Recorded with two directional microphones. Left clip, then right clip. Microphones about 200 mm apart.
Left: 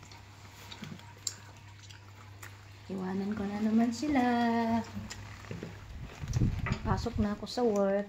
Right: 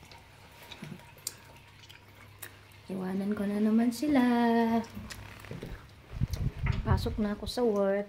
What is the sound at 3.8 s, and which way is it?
Speech, 40° right (ahead or behind).